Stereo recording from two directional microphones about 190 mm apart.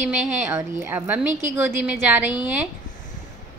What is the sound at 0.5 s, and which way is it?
A woman's voice, 10° right (ahead or behind).